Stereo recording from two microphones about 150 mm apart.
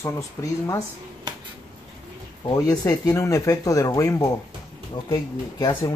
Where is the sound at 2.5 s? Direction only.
25° left (ahead or behind).